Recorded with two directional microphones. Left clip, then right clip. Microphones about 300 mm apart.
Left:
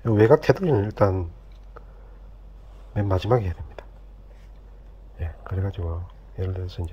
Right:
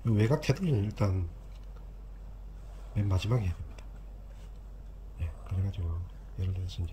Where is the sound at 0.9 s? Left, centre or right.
Left.